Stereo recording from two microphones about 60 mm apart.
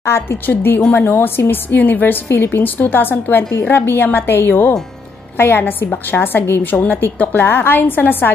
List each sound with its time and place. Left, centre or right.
0.0 s a woman's voice: left